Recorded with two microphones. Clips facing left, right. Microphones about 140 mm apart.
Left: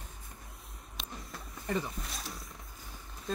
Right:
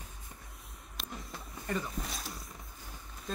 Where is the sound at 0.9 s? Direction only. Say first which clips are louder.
Right 1 dB; centre (ahead or behind).